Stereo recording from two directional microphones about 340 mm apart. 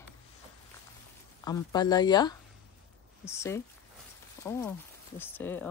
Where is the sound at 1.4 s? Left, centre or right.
Centre.